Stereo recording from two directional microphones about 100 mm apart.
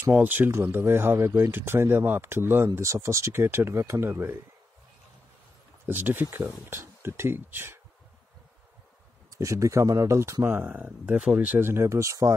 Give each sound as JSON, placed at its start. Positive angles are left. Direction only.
{"t": 0.0, "sound": "speech", "side_deg": -15}
{"t": 5.9, "sound": "speech", "side_deg": -20}
{"t": 9.3, "sound": "speech", "side_deg": -30}
{"t": 10.6, "sound": "speech", "side_deg": -15}